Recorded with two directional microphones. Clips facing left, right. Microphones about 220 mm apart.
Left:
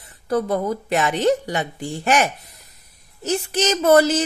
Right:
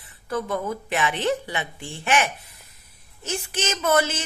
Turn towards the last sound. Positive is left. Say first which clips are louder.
# left 8 dB
turn(degrees=35)  # may be behind; listen again after turning